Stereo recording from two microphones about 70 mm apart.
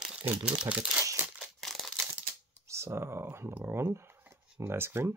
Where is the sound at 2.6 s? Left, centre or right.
Right.